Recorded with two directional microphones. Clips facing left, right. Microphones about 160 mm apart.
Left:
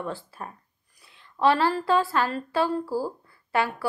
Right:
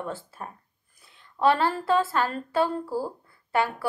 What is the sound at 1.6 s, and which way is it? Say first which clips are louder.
Speech: left 1 dB; 20° right (ahead or behind).